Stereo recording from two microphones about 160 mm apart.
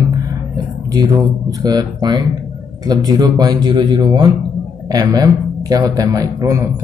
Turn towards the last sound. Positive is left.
turn(degrees=-20)  # may be behind; listen again after turning